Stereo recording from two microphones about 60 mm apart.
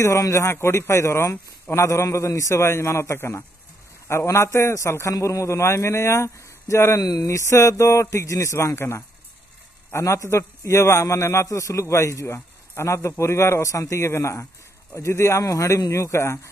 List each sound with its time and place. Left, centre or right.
0.3 s a man's voice: left
2.6 s a man's voice: left
7.0 s a man's voice: left
11.4 s a man's voice: left
15.4 s speech: left